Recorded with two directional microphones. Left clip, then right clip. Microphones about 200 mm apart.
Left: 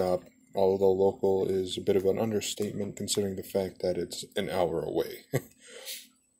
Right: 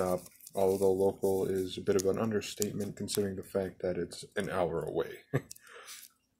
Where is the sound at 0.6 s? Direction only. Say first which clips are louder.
Left 4 dB; 25° left (ahead or behind).